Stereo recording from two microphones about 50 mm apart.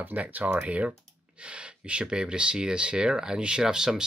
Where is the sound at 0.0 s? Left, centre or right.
Right.